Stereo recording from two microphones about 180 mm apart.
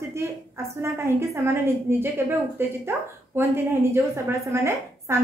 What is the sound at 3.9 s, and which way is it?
A woman's voice, 15° right (ahead or behind).